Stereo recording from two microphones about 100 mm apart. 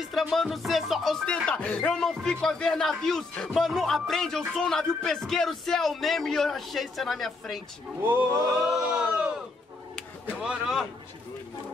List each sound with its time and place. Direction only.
0.0 s speech: centre (ahead or behind)
1.2 s speech: 10° left (ahead or behind)
8.0 s speech: 20° right (ahead or behind)
8.9 s crowd: 10° right (ahead or behind)
10.4 s speech: 5° right (ahead or behind)